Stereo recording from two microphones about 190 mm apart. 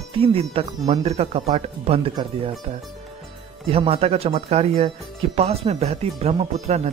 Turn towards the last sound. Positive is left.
turn(degrees=-35)  # may be behind; listen again after turning